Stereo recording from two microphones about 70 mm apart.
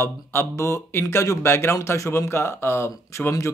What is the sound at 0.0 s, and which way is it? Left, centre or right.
Speech, left.